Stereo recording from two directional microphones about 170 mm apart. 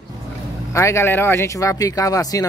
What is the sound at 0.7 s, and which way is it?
Speech, 15° left (ahead or behind).